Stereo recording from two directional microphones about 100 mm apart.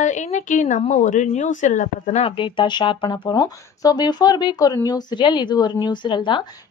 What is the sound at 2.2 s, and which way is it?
Speech, 55° left (ahead or behind).